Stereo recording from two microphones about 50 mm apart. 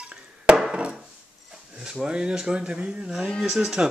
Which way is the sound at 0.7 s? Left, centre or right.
Right.